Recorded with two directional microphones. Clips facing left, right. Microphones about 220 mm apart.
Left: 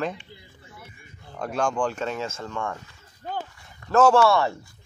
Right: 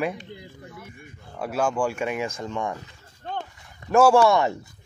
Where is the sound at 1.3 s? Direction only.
5° right (ahead or behind).